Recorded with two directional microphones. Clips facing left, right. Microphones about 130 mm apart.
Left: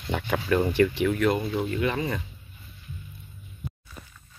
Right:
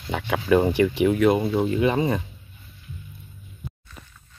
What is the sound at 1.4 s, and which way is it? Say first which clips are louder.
Speech: right 5 dB; 30° right (ahead or behind).